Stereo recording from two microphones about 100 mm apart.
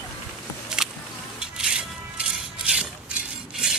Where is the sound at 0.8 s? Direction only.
5° right (ahead or behind).